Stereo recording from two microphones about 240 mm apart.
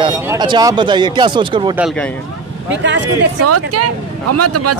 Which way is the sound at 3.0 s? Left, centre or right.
Right.